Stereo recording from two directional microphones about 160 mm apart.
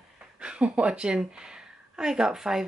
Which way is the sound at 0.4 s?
5° right (ahead or behind).